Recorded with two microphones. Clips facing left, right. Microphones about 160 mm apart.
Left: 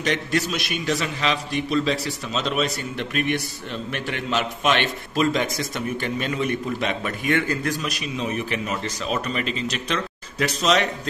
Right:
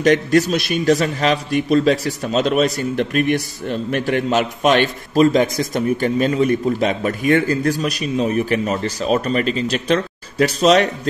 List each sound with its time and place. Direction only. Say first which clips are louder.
0.0 s a man's voice: right 9 dB; 45° right (ahead or behind)